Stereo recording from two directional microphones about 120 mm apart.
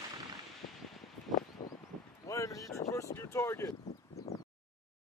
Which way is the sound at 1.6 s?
30° left (ahead or behind).